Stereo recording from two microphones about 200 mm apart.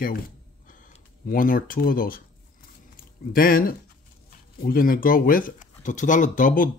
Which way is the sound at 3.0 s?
45° left (ahead or behind).